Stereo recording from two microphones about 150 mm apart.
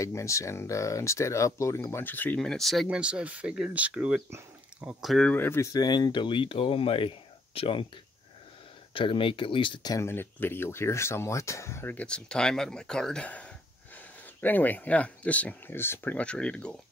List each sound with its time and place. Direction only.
0.0 s speech: 20° left (ahead or behind); by 7.8 s 35° left (ahead or behind)
8.9 s speech: 35° left (ahead or behind)
9.9 s speech: 15° left (ahead or behind)